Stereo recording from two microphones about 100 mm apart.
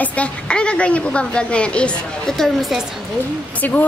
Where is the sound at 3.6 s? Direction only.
15° left (ahead or behind).